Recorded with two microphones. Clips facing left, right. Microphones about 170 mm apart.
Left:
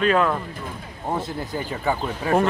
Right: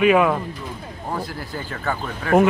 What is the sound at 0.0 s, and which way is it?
Speech, 10° right (ahead or behind).